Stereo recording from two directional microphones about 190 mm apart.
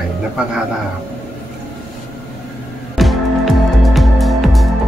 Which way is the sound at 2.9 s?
Centre (ahead or behind).